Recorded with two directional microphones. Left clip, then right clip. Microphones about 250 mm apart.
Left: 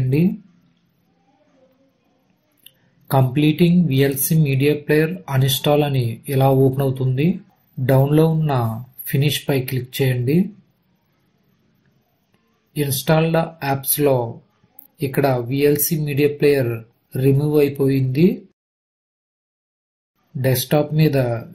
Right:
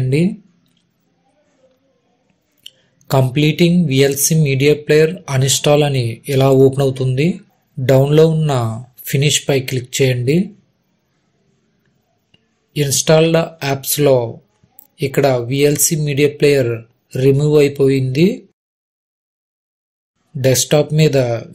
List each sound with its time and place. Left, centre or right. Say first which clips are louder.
3.1 s speech: right 3 dB; right
12.7 s speech: right 7 dB; right
20.4 s speech: right 6 dB; right